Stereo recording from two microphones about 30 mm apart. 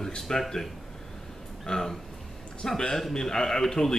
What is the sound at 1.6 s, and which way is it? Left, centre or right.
A man's voice, left.